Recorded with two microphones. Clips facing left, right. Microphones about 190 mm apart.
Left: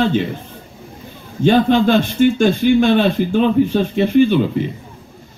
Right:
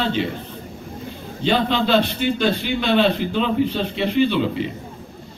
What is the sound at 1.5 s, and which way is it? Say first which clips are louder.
A man's voice: left 6 dB; 45° left (ahead or behind).